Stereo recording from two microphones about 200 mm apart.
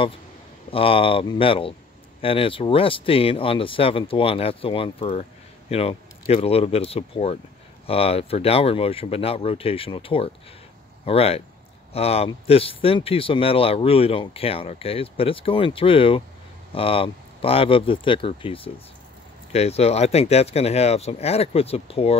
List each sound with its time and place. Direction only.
0.7 s speech: 25° left (ahead or behind)